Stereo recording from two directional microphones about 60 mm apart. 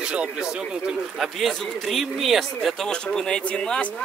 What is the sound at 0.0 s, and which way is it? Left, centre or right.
Speech, centre.